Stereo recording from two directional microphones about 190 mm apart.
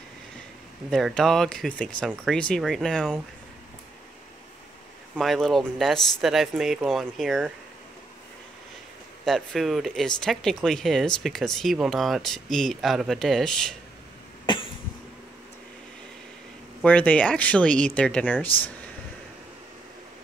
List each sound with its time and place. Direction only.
0.8 s speech: centre (ahead or behind)
5.1 s speech: centre (ahead or behind)
9.2 s speech: centre (ahead or behind)
14.4 s cough: 25° left (ahead or behind)
16.8 s speech: 10° left (ahead or behind)